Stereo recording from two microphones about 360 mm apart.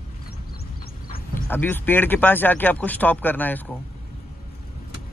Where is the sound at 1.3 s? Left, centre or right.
Centre.